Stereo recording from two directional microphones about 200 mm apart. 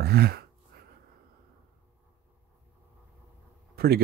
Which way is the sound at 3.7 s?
50° right (ahead or behind).